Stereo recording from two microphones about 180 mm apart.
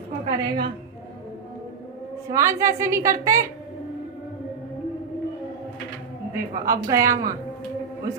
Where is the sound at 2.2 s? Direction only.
15° right (ahead or behind).